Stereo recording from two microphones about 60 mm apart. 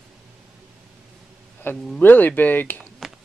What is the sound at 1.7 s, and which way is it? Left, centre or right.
Speech, left.